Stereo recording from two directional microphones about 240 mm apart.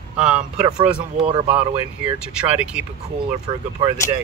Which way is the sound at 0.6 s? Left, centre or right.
Centre.